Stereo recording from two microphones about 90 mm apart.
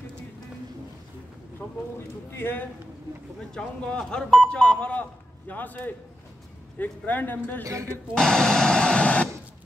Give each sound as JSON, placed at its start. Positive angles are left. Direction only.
{"t": 1.6, "sound": "a sound", "side_deg": 25}
{"t": 2.0, "sound": "speech", "side_deg": 25}
{"t": 3.5, "sound": "speech", "side_deg": 10}
{"t": 7.6, "sound": "speech", "side_deg": -35}
{"t": 8.1, "sound": "speech", "side_deg": 5}